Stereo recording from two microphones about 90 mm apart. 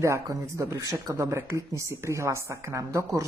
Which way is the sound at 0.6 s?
35° right (ahead or behind).